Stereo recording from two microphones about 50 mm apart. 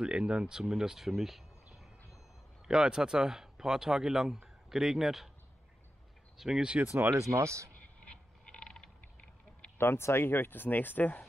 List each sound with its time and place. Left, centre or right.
0.0 s speech: centre
2.6 s speech: centre
6.3 s speech: centre
7.2 s speech: right
8.5 s a sound: centre
9.8 s speech: left